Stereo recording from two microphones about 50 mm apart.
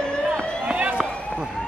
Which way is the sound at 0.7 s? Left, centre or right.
Centre.